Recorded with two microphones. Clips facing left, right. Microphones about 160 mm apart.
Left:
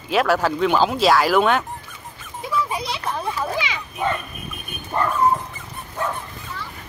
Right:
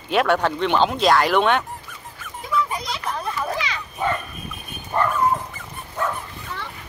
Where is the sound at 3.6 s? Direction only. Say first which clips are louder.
Left 2 dB; 15° left (ahead or behind).